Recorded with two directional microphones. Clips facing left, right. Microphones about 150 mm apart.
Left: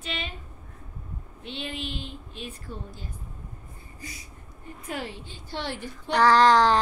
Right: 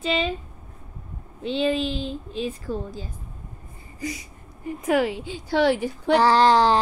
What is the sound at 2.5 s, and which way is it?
A woman's voice, 90° right.